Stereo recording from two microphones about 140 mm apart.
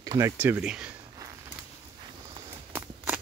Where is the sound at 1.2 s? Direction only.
25° right (ahead or behind).